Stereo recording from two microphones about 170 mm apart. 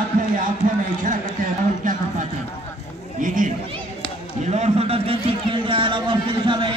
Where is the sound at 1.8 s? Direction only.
50° right (ahead or behind).